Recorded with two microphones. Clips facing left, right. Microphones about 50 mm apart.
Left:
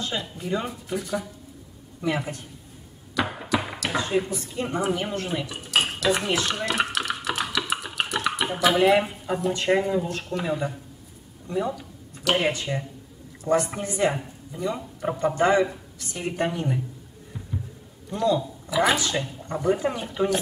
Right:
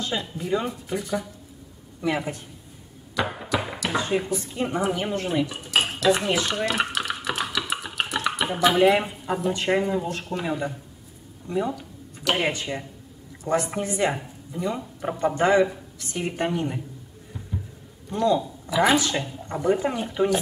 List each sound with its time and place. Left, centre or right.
0.0 s a man's voice: centre
4.8 s dishes: centre
9.6 s speech: centre
13.4 s a woman's voice: right
14.1 s a sound: centre
14.8 s speech: centre
18.1 s speech: centre